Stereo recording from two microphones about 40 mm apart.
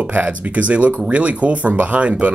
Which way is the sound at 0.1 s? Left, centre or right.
Right.